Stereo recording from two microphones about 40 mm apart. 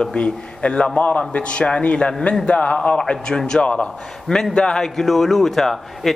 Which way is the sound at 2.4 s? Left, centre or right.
Left.